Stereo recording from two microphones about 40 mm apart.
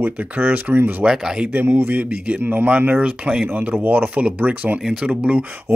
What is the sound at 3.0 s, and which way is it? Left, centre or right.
Speech, right.